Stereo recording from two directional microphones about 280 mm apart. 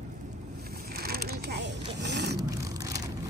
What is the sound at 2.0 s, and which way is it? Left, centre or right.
Vehicle, right.